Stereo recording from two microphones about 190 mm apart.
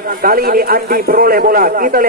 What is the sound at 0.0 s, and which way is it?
A man's voice, 50° right (ahead or behind).